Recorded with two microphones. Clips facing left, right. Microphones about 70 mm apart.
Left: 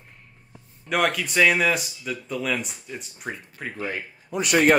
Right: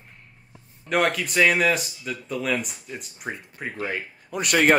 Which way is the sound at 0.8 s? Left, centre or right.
Centre.